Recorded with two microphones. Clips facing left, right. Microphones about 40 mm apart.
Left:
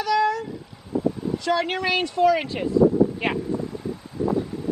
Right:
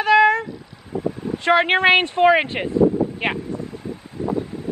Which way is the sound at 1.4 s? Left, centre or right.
Right.